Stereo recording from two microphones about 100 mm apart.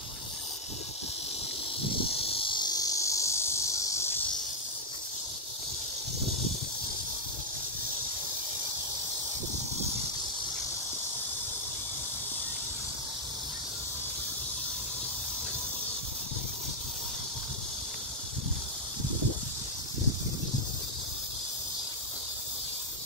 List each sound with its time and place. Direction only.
2.4 s cricket: 50° left (ahead or behind); by 4.1 s 30° left (ahead or behind)